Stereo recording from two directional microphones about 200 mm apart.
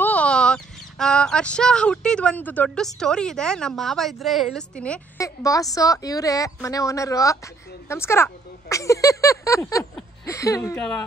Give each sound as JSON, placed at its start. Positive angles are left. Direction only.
{"t": 0.0, "sound": "a woman's voice", "side_deg": 5}
{"t": 10.8, "sound": "speech", "side_deg": 5}